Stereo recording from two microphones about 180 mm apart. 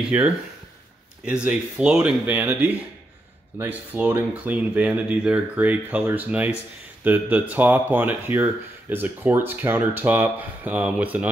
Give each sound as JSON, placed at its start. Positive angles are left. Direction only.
{"t": 0.1, "sound": "speech", "side_deg": -10}
{"t": 3.9, "sound": "speech", "side_deg": -10}